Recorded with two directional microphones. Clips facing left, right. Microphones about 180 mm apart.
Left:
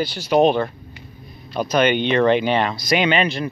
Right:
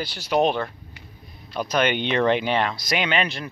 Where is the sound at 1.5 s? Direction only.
5° left (ahead or behind).